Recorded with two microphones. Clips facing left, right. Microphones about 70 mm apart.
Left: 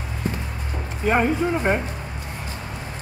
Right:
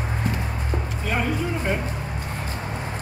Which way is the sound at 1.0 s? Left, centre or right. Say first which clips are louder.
Left 7 dB; left.